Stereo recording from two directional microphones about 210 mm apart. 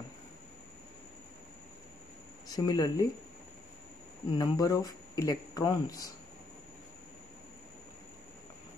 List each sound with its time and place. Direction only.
2.4 s speech: 20° left (ahead or behind)
4.3 s speech: 20° left (ahead or behind)